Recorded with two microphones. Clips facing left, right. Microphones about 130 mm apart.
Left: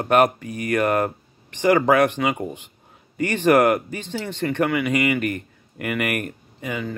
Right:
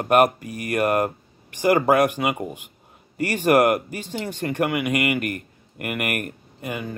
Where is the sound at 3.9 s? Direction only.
10° right (ahead or behind).